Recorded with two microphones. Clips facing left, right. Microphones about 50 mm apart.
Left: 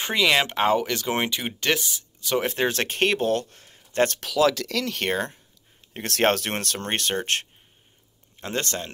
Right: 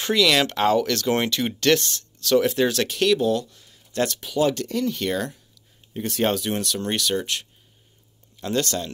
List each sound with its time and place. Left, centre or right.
0.0 s speech: left
2.4 s speech: left
4.2 s speech: left
5.0 s speech: left
5.9 s speech: left
8.4 s speech: left